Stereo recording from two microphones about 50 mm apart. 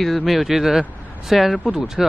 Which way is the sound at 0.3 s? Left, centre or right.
Centre.